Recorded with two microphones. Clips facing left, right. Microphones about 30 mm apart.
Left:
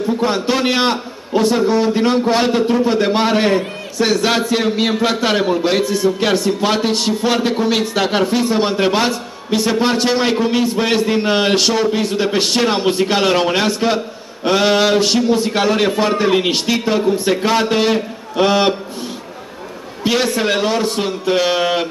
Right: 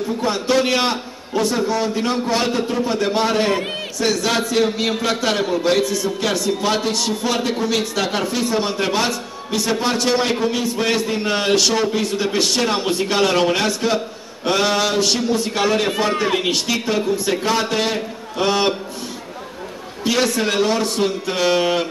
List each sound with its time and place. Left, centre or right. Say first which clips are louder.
0.5 s a man's voice: right 1 dB; centre
10.0 s a man's voice: left 3 dB; centre
11.7 s a man's voice: left 3 dB; centre
20.0 s a man's voice: left 2 dB; left